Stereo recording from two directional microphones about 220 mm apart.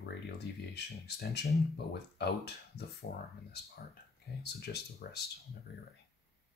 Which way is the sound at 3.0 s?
40° left (ahead or behind).